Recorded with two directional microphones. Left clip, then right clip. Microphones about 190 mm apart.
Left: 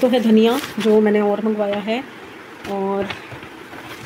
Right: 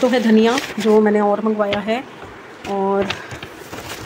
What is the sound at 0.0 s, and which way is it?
Speech, 5° left (ahead or behind).